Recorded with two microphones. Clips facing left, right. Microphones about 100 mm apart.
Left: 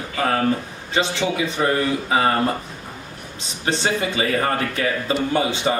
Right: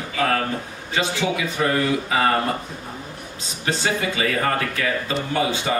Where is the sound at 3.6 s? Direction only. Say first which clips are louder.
Left 1 dB; 30° left (ahead or behind).